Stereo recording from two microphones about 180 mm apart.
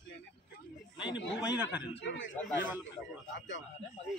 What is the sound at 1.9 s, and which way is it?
Speech, 90° left.